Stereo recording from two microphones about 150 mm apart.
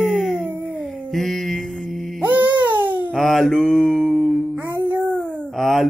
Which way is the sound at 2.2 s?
10° right (ahead or behind).